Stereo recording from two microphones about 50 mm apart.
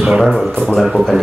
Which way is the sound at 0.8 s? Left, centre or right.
Centre.